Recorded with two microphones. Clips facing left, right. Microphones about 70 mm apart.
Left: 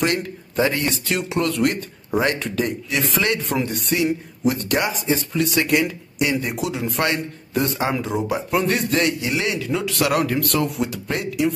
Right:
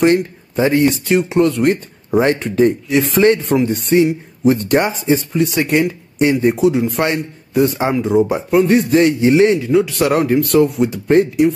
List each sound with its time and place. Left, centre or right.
0.0 s speech: right